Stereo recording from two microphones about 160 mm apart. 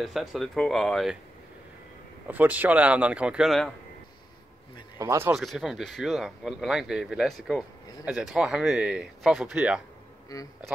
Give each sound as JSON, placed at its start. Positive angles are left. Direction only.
{"t": 0.0, "sound": "speech", "side_deg": 0}
{"t": 2.2, "sound": "speech", "side_deg": -10}
{"t": 4.9, "sound": "speech", "side_deg": -15}
{"t": 5.4, "sound": "speech", "side_deg": 0}
{"t": 10.3, "sound": "speech", "side_deg": 20}